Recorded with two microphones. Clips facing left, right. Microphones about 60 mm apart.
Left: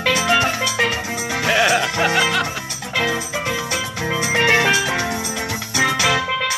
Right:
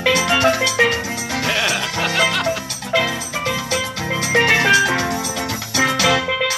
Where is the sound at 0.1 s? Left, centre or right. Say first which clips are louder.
Right 1 dB; centre.